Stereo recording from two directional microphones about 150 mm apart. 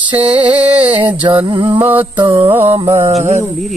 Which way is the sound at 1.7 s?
10° right (ahead or behind).